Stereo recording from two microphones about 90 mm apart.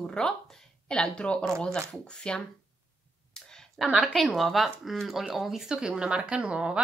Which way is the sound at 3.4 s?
5° left (ahead or behind).